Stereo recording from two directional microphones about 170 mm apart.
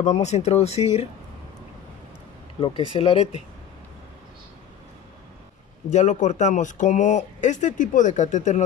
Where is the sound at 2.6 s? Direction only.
30° left (ahead or behind).